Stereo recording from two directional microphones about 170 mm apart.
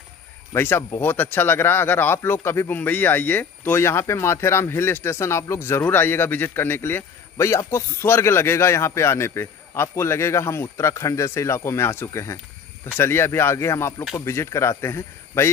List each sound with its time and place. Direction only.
0.5 s speech: 15° left (ahead or behind)